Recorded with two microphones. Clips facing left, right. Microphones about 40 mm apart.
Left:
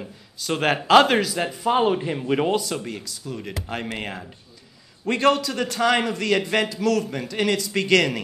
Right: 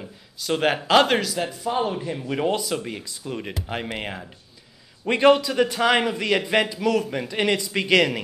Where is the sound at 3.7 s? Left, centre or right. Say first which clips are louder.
Even; centre.